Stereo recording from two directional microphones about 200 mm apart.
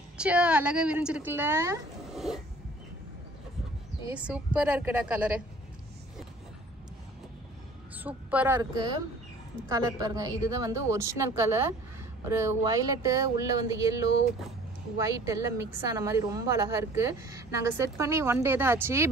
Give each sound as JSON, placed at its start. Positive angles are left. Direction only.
{"t": 0.2, "sound": "a woman's voice", "side_deg": -5}
{"t": 2.1, "sound": "a sound", "side_deg": 0}
{"t": 4.1, "sound": "a woman's voice", "side_deg": -5}
{"t": 8.0, "sound": "a woman's voice", "side_deg": -5}
{"t": 8.5, "sound": "a woman's voice", "side_deg": -20}